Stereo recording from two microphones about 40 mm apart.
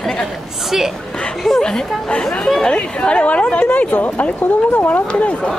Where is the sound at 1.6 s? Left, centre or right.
Centre.